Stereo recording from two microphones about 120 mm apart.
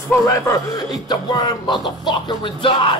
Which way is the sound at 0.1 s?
30° left (ahead or behind).